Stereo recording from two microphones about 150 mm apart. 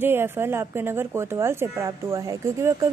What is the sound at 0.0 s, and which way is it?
Speech, 15° right (ahead or behind).